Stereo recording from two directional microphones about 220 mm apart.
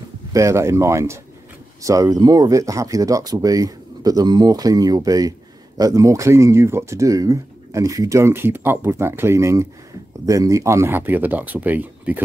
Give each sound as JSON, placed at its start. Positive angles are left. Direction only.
{"t": 0.3, "sound": "speech", "side_deg": -15}